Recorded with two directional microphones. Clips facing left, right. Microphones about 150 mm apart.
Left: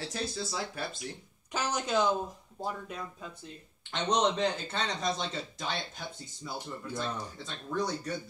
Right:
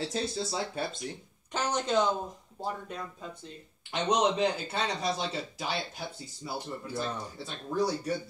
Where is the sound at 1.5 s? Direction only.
5° left (ahead or behind).